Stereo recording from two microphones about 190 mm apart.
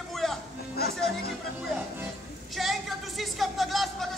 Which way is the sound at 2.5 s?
Centre (ahead or behind).